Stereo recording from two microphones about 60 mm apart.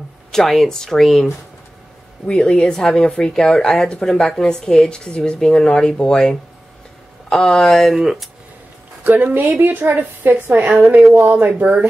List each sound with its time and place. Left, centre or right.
0.3 s speech: centre
2.2 s speech: centre
9.0 s a woman's voice: right